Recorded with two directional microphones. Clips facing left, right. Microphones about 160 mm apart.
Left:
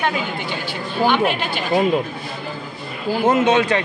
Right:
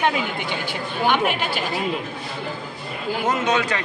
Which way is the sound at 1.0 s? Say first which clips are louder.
Left 3 dB; 10° right (ahead or behind).